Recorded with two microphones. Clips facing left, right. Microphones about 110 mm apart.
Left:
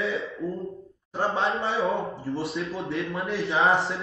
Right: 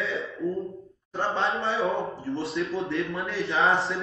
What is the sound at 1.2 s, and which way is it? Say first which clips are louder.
Speech: left 1 dB; centre (ahead or behind).